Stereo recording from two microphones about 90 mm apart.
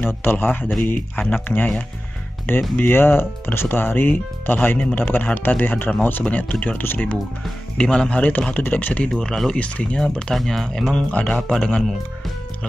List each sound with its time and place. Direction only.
0.0 s speech: 25° left (ahead or behind)
2.8 s speech: 25° left (ahead or behind)
7.7 s speech: 10° left (ahead or behind)
9.1 s speech: 5° left (ahead or behind)